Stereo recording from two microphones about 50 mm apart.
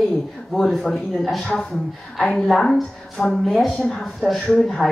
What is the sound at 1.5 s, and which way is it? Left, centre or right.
Speech, centre.